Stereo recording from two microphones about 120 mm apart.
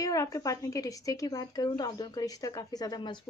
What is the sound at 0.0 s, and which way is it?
Speech, 30° left (ahead or behind).